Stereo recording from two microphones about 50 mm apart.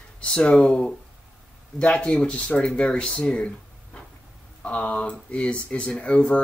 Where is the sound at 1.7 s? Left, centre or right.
Centre.